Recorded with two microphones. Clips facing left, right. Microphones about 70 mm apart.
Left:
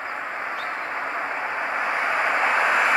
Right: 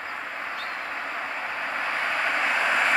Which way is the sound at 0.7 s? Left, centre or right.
Left.